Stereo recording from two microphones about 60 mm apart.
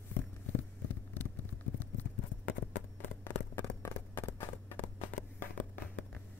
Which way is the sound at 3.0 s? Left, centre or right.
Left.